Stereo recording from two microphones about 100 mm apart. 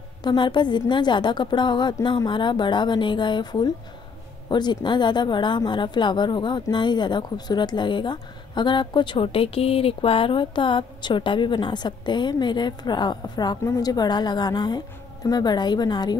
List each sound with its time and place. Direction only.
0.2 s speech: 50° left (ahead or behind)